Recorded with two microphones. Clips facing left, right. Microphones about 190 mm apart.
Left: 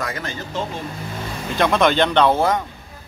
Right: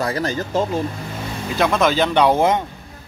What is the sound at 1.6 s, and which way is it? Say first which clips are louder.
Speech: left 1 dB; centre (ahead or behind).